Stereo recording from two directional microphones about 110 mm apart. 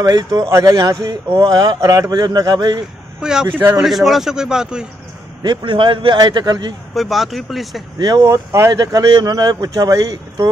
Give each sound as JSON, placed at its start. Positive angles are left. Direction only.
{"t": 0.0, "sound": "a man's voice", "side_deg": -35}
{"t": 1.6, "sound": "speech", "side_deg": -30}
{"t": 3.2, "sound": "a man's voice", "side_deg": -5}
{"t": 5.4, "sound": "a man's voice", "side_deg": -45}
{"t": 6.1, "sound": "speech", "side_deg": -40}
{"t": 7.0, "sound": "a man's voice", "side_deg": 0}
{"t": 8.0, "sound": "speech", "side_deg": -35}
{"t": 8.8, "sound": "speech", "side_deg": -40}